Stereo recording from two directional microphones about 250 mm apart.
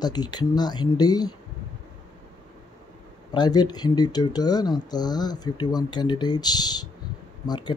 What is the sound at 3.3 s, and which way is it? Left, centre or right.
Speech, centre.